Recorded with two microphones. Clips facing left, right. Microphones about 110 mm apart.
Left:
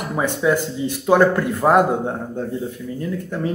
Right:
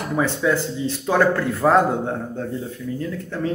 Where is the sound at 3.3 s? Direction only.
15° left (ahead or behind).